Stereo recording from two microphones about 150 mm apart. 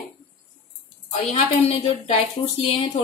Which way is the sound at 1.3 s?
40° left (ahead or behind).